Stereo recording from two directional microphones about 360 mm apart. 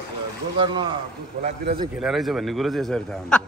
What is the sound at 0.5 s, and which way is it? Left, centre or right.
A man's voice, centre.